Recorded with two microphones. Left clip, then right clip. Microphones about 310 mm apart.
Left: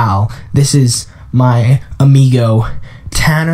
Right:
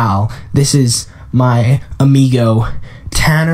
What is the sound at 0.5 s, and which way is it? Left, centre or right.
Speech, centre.